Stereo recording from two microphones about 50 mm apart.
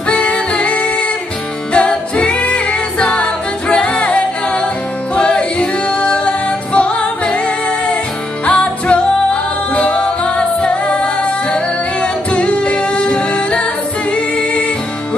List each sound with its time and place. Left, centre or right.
0.1 s music: centre
3.2 s a capella: left
5.1 s music: left